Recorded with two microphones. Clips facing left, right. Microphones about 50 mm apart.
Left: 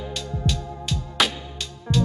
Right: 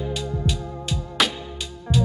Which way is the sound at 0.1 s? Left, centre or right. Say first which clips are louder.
Right 2 dB; centre.